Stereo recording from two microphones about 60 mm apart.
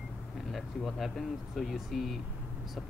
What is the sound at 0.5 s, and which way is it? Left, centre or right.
Speech, centre.